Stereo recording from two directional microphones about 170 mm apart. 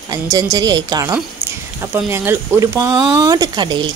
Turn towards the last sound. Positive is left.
turn(degrees=-25)  # may be behind; listen again after turning